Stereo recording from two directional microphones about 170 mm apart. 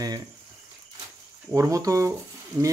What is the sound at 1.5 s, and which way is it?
Speech, 20° right (ahead or behind).